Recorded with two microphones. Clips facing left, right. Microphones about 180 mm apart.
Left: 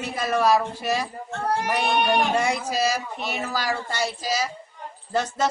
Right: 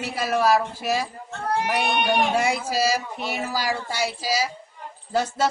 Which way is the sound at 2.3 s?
5° right (ahead or behind).